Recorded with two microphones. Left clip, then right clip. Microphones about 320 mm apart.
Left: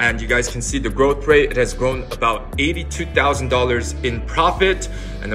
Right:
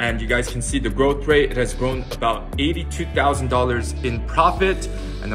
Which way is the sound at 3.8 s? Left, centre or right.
Right.